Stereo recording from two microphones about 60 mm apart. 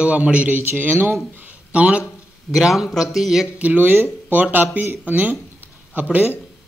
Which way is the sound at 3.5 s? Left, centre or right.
Right.